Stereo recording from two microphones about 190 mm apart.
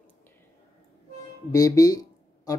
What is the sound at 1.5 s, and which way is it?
Speech, 20° left (ahead or behind).